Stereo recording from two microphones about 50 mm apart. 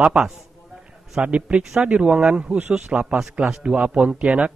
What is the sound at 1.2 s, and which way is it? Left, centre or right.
Speech, right.